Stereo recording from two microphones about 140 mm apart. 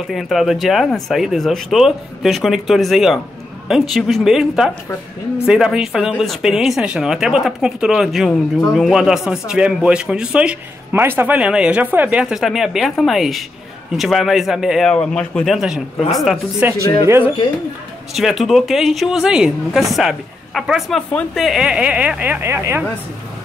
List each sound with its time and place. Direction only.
0.1 s a man's voice: centre (ahead or behind)
17.0 s speech: 20° right (ahead or behind)
18.1 s a man's voice: centre (ahead or behind); by 22.8 s 15° right (ahead or behind)